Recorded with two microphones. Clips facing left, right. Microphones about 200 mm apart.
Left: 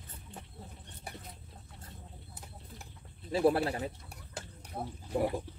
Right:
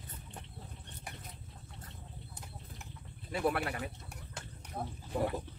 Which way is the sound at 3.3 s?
30° left (ahead or behind).